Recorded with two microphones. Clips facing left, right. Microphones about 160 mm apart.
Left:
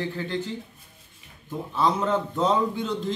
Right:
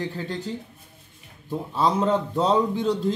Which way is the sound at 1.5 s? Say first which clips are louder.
Right 1 dB; 35° right (ahead or behind).